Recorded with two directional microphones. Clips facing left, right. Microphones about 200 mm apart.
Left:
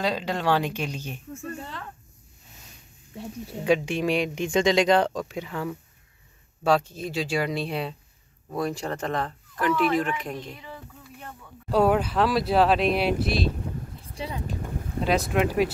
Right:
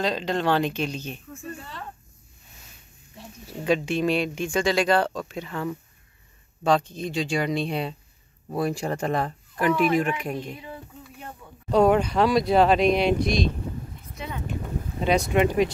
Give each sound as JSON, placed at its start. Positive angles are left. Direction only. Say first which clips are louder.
{"t": 0.0, "sound": "speech", "louder": "right 1 dB", "side_deg": 10}
{"t": 3.6, "sound": "speech", "louder": "even", "side_deg": 15}
{"t": 8.5, "sound": "speech", "louder": "right 2 dB", "side_deg": -10}
{"t": 11.7, "sound": "speech", "louder": "right 2 dB", "side_deg": 5}
{"t": 14.0, "sound": "a sound", "louder": "left 1 dB", "side_deg": 30}
{"t": 15.0, "sound": "speech", "louder": "right 2 dB", "side_deg": 0}